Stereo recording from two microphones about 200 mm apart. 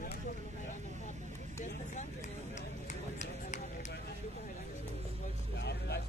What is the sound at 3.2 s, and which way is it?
Run, 35° left (ahead or behind).